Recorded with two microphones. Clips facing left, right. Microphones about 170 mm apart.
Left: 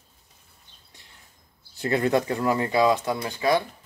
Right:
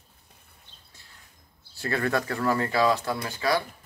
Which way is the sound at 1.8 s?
20° left (ahead or behind).